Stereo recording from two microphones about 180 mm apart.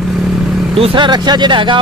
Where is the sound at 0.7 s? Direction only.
30° right (ahead or behind).